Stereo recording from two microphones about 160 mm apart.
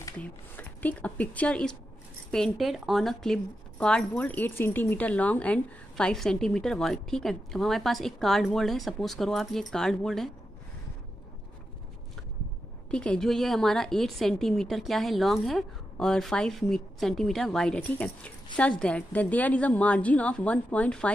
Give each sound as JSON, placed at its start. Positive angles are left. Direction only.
{"t": 0.2, "sound": "a woman's voice", "side_deg": 10}
{"t": 12.9, "sound": "a woman's voice", "side_deg": 5}